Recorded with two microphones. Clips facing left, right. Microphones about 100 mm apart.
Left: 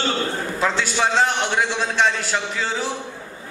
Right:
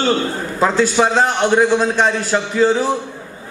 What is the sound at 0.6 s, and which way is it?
A man's voice, 45° right (ahead or behind).